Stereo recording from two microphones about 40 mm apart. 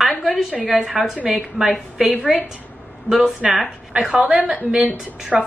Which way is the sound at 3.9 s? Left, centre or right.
Right.